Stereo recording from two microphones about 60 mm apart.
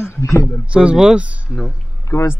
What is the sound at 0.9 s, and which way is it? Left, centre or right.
Speech, centre.